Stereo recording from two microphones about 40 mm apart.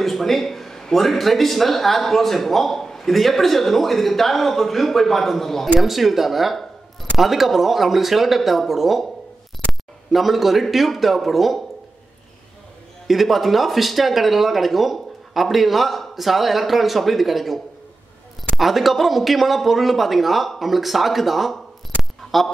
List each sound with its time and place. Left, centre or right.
0.0 s a man's voice: centre
13.0 s a man's voice: centre
18.6 s a man's voice: centre
22.2 s a sound: centre